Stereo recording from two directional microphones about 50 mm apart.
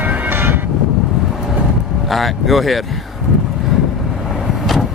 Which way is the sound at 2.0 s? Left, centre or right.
Centre.